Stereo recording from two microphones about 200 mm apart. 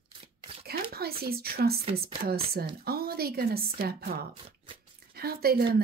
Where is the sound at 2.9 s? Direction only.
50° right (ahead or behind).